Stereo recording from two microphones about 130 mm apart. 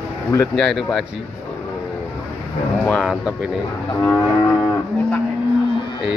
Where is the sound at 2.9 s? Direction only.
5° left (ahead or behind).